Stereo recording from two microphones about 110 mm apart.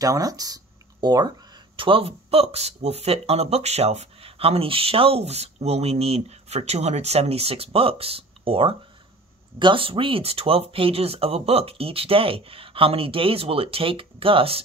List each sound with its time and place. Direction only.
0.0 s speech: 30° right (ahead or behind)
1.8 s speech: 55° right (ahead or behind)